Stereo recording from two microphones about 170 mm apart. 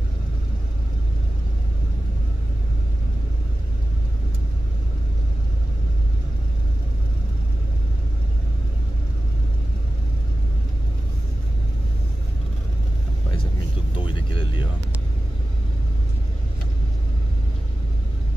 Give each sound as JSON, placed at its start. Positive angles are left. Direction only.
{"t": 13.9, "sound": "vehicle", "side_deg": 30}